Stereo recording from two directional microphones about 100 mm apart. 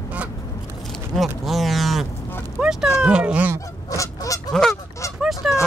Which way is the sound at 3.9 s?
35° left (ahead or behind).